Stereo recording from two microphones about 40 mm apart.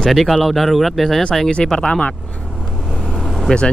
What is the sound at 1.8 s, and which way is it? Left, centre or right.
Speech, left.